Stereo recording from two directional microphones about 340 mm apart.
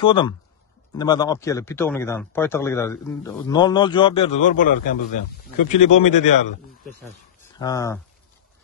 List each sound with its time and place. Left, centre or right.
0.0 s a man's voice: centre
7.5 s a man's voice: centre